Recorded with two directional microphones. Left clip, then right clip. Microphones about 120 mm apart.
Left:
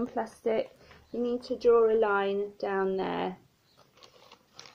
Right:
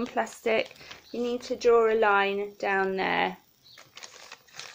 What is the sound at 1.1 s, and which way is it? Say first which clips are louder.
Speech: right 1 dB; 25° right (ahead or behind).